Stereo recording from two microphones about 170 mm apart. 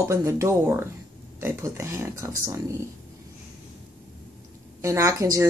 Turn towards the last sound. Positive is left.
turn(degrees=-20)  # may be behind; listen again after turning